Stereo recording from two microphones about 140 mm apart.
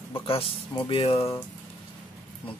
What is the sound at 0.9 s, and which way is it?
Mantra, 45° left (ahead or behind).